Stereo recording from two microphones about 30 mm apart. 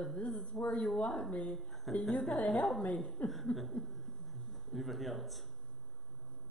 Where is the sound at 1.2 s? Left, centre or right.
Left.